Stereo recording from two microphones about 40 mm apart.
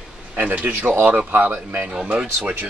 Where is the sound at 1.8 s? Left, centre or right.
Right.